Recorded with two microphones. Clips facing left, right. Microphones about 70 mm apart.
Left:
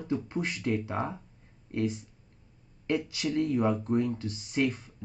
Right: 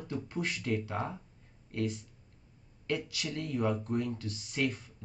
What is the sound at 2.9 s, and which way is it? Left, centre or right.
Speech, left.